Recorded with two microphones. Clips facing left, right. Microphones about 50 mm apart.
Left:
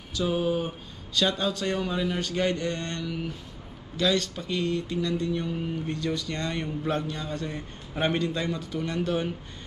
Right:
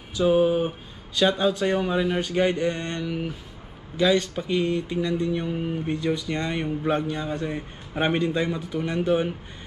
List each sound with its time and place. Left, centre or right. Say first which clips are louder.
0.1 s speech: right 6 dB; centre